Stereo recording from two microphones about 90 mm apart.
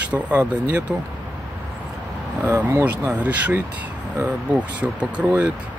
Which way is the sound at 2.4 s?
25° right (ahead or behind).